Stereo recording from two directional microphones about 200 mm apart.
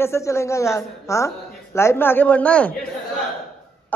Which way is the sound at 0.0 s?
15° left (ahead or behind).